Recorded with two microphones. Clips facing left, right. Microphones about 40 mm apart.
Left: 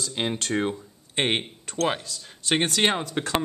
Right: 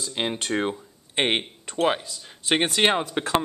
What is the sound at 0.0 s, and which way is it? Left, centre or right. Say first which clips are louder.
Speech: even; centre.